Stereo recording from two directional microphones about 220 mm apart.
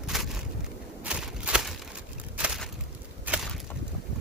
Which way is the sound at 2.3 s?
5° right (ahead or behind).